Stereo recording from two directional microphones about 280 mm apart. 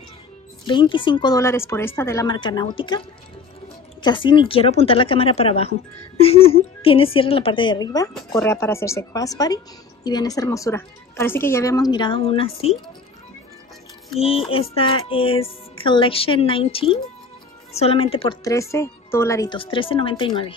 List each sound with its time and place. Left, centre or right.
0.7 s a woman's voice: centre
14.5 s a woman's voice: centre